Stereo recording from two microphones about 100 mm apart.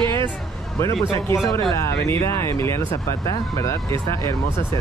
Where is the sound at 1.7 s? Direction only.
30° left (ahead or behind).